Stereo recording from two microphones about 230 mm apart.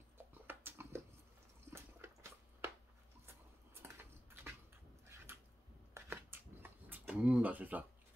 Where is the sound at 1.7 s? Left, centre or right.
Centre.